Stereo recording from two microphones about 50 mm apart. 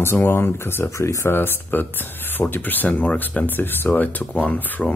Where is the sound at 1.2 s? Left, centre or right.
Left.